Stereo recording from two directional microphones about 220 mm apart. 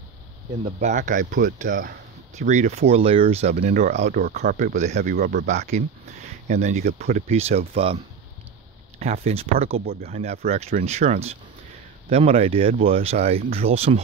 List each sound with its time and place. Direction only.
0.7 s speech: 35° right (ahead or behind)
5.1 s speech: 45° right (ahead or behind)
5.7 s speech: 35° right (ahead or behind)
9.0 s speech: 30° right (ahead or behind)
9.8 s speech: 45° right (ahead or behind)
10.2 s speech: 30° right (ahead or behind)